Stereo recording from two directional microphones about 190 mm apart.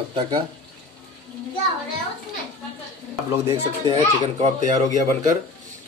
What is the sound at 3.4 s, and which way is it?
Speech, 20° right (ahead or behind).